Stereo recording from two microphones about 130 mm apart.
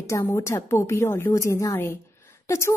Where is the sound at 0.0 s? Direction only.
20° left (ahead or behind).